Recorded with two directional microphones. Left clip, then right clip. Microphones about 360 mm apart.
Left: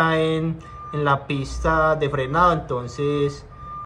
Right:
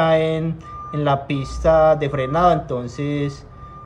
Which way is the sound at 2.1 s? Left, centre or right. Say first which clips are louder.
Right 2 dB; centre.